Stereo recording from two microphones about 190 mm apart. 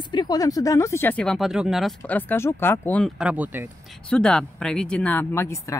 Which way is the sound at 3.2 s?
5° right (ahead or behind).